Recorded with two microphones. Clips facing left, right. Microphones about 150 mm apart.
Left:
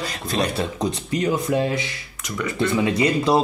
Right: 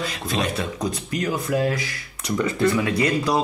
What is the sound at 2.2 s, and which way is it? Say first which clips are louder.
Speech: right 4 dB; 30° right (ahead or behind).